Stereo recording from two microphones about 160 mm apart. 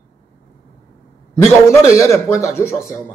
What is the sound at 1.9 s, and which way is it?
Speech, 20° left (ahead or behind).